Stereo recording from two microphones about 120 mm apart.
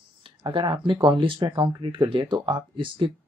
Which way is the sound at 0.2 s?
45° right (ahead or behind).